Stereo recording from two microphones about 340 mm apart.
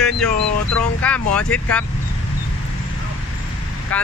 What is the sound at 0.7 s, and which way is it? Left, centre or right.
Speech, centre.